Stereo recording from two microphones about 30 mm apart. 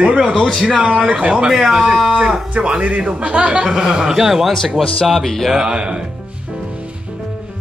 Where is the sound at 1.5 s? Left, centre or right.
Centre.